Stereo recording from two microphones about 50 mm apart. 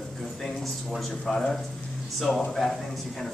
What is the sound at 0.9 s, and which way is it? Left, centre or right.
A woman's voice, centre.